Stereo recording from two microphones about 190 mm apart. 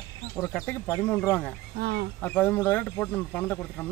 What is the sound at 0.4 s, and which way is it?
Speech, 10° left (ahead or behind).